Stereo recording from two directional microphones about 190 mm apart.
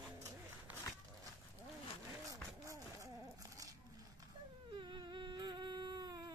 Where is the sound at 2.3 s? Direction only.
15° right (ahead or behind).